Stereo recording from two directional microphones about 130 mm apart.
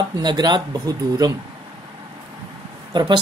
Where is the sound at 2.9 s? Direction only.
35° right (ahead or behind).